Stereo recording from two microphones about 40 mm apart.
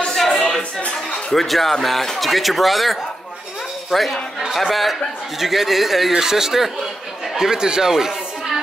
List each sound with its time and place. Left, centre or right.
0.1 s a sound: centre
0.6 s music: left
1.3 s speech: centre